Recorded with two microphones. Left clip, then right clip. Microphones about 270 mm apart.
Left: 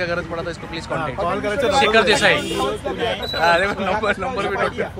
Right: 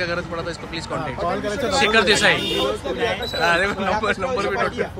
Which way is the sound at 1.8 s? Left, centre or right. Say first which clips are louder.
Left 1 dB; centre.